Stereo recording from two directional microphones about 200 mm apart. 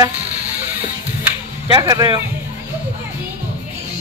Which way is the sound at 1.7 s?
20° right (ahead or behind).